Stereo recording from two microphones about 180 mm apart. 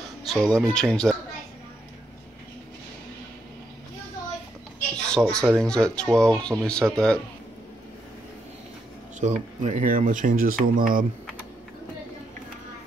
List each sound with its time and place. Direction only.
0.3 s speech: centre (ahead or behind)
5.0 s speech: 5° left (ahead or behind)
9.2 s speech: 40° right (ahead or behind)